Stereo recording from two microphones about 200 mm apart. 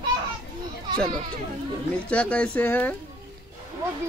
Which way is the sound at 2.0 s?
5° left (ahead or behind).